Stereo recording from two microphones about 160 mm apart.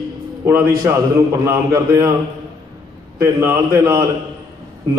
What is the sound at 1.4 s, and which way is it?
Speech, 20° right (ahead or behind).